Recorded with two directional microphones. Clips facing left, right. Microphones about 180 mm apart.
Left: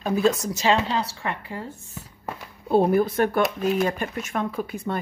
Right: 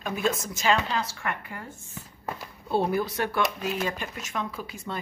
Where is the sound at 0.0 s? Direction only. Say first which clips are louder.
Left 6 dB; 35° left (ahead or behind).